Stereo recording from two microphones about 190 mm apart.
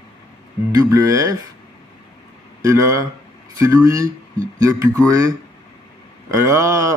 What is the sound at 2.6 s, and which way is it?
Speech, 15° right (ahead or behind).